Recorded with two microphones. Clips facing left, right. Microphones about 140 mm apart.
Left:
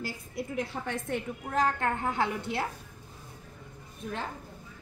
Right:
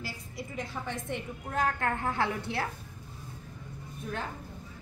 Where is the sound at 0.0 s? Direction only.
55° left (ahead or behind).